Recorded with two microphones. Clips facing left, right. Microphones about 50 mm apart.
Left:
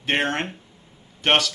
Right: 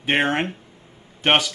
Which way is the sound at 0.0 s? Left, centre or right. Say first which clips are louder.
Right 3 dB; centre.